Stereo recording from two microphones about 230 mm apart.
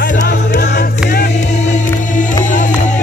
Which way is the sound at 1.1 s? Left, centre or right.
Left.